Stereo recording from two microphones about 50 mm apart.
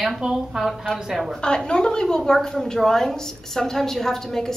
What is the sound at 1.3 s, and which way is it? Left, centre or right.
A woman's voice, centre.